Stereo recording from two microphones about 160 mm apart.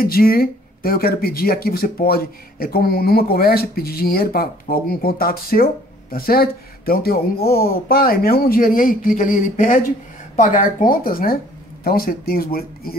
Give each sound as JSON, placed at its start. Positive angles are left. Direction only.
{"t": 0.0, "sound": "speech", "side_deg": 65}